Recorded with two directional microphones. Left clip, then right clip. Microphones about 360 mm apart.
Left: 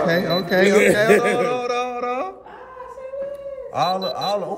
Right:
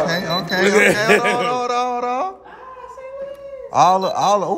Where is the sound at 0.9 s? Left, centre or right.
Centre.